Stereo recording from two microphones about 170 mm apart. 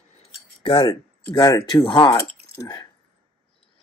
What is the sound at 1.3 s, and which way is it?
Speech, 20° left (ahead or behind).